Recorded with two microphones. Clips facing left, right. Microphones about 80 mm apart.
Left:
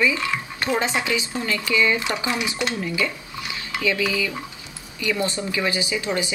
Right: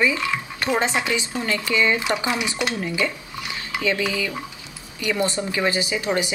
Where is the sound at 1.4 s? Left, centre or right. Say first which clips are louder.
Even; right.